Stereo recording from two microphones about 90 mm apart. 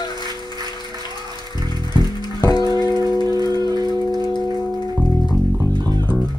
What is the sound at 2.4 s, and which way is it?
Music, 50° left (ahead or behind).